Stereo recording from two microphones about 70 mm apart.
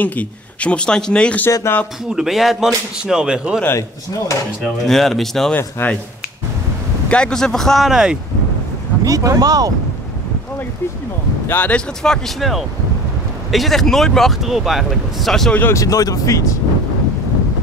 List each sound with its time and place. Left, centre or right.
0.0 s speech: left
1.6 s speech: left
2.0 s speech: centre
3.6 s speech: left
4.8 s speech: centre
5.8 s speech: left
7.1 s speech: centre
9.0 s speech: right
11.4 s speech: left
12.0 s speech: centre
15.7 s speech: left